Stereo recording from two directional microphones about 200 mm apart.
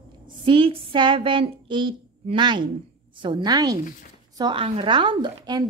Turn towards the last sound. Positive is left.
turn(degrees=-20)  # may be behind; listen again after turning